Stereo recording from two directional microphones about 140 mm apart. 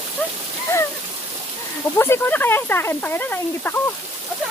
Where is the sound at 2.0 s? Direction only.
15° left (ahead or behind).